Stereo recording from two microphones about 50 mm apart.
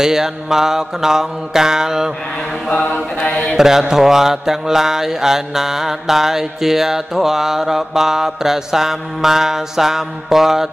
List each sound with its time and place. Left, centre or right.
0.0 s mantra: centre
2.7 s mantra: left
3.5 s mantra: centre